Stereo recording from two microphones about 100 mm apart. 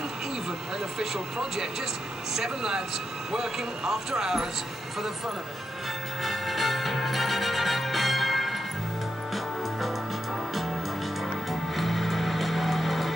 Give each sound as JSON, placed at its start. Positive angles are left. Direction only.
{"t": 0.9, "sound": "speech", "side_deg": -5}
{"t": 6.2, "sound": "music", "side_deg": 0}
{"t": 11.7, "sound": "music", "side_deg": 0}